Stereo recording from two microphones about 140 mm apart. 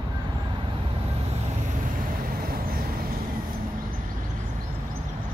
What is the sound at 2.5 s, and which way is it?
Vehicle, 90° right.